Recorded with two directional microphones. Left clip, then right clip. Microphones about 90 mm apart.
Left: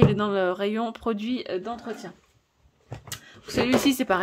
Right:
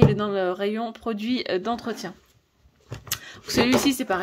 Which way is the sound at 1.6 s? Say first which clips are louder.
Right 5 dB; 40° right (ahead or behind).